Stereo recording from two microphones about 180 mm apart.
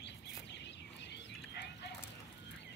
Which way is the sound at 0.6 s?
70° left (ahead or behind).